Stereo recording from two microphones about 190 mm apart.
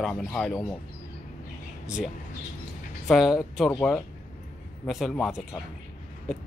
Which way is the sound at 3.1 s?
Centre (ahead or behind).